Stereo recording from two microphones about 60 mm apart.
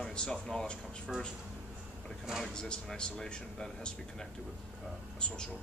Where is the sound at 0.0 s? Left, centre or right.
Centre.